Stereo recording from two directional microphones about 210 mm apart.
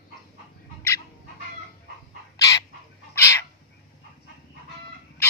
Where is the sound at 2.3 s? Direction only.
15° left (ahead or behind).